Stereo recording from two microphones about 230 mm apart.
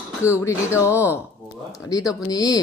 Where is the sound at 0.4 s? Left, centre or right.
Centre.